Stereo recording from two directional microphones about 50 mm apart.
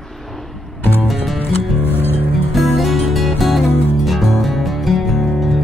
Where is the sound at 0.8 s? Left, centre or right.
Left.